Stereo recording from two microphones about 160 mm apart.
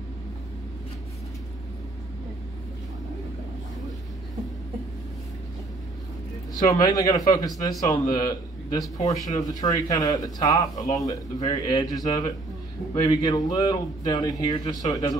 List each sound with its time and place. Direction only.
6.5 s a man's voice: 25° left (ahead or behind)